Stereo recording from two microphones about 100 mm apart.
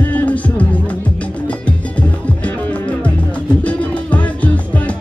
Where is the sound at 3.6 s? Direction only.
15° left (ahead or behind).